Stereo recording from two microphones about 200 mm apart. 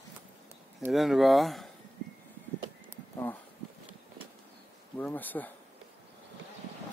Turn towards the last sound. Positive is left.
turn(degrees=10)  # may be behind; listen again after turning